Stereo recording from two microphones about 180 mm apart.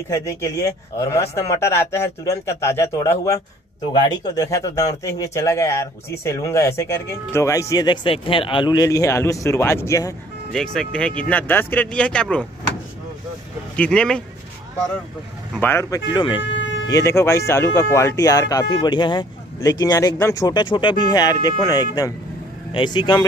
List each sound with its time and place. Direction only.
0.1 s speech: 15° left (ahead or behind)
10.5 s speech: 5° left (ahead or behind)
13.7 s speech: 5° left (ahead or behind)
15.6 s speech: 15° left (ahead or behind)
16.4 s a sound: 90° left
16.9 s speech: 15° left (ahead or behind)